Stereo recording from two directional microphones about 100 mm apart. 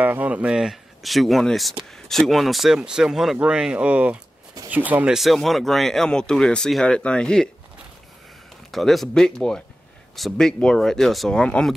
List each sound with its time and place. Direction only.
0.0 s speech: 15° right (ahead or behind)
5.1 s speech: centre (ahead or behind)
8.7 s speech: centre (ahead or behind)